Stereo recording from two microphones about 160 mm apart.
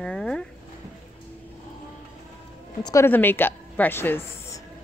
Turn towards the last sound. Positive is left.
turn(degrees=15)  # may be behind; listen again after turning